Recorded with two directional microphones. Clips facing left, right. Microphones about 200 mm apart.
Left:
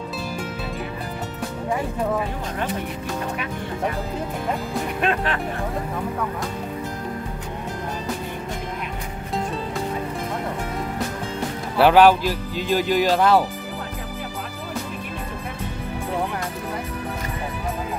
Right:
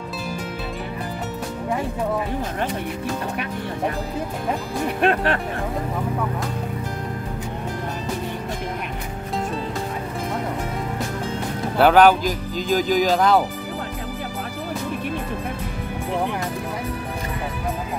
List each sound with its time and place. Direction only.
5.0 s speech: 45° right (ahead or behind)
11.8 s speech: centre (ahead or behind)